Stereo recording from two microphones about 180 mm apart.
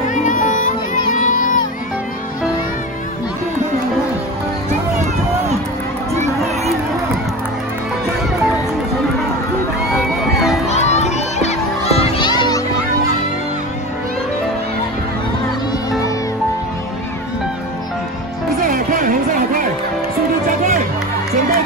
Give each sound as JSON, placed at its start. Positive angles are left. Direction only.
{"t": 0.1, "sound": "music", "side_deg": 45}
{"t": 6.1, "sound": "crowd", "side_deg": -35}
{"t": 10.7, "sound": "music", "side_deg": 40}
{"t": 18.7, "sound": "a sound", "side_deg": -50}